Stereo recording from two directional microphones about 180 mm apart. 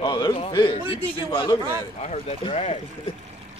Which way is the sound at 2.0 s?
40° left (ahead or behind).